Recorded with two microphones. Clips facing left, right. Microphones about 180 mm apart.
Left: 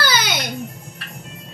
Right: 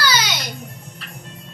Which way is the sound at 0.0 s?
50° left (ahead or behind).